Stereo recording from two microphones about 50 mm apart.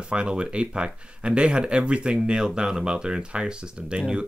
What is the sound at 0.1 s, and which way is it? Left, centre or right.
Speech, right.